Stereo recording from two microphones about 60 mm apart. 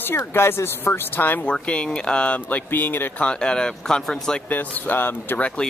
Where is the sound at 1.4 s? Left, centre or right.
Centre.